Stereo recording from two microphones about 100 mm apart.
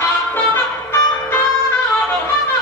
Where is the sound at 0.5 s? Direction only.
25° left (ahead or behind).